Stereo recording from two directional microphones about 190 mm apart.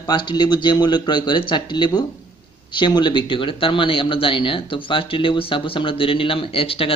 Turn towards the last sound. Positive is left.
turn(degrees=30)  # may be behind; listen again after turning